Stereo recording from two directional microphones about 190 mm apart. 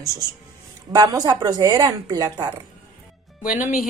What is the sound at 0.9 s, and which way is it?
A woman's voice, 20° right (ahead or behind).